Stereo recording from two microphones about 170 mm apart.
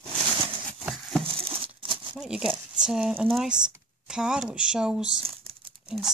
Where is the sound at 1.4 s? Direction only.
30° right (ahead or behind).